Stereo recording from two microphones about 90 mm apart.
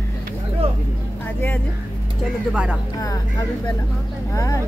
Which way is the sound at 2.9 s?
40° left (ahead or behind).